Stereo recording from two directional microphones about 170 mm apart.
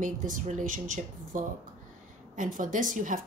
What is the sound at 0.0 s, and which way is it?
Speech, 50° right (ahead or behind).